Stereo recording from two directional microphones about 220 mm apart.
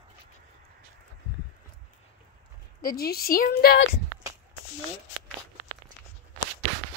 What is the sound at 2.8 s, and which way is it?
A woman's voice, 45° left (ahead or behind).